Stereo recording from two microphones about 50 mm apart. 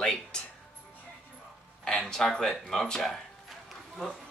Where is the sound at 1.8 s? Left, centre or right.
Centre.